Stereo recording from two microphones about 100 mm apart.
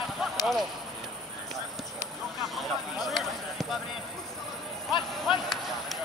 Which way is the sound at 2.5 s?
Centre (ahead or behind).